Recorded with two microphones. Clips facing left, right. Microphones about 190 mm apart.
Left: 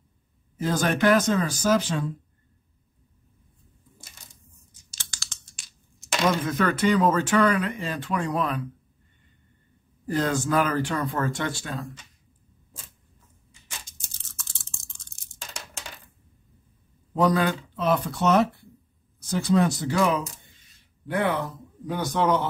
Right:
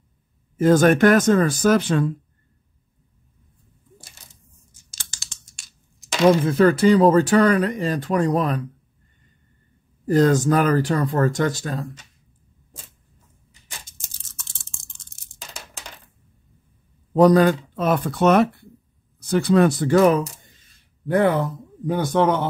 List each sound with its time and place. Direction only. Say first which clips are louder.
0.6 s speech: right 10 dB; 50° right (ahead or behind)
6.2 s speech: right 9 dB; 30° right (ahead or behind)
10.0 s speech: right 8 dB; 40° right (ahead or behind)
17.1 s speech: right 8 dB; 40° right (ahead or behind)